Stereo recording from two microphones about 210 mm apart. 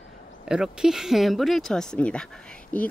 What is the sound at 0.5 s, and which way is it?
Speech, 5° right (ahead or behind).